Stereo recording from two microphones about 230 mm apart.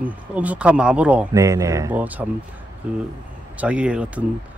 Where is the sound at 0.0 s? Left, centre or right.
Centre.